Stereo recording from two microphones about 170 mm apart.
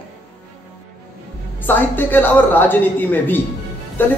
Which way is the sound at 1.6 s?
10° left (ahead or behind).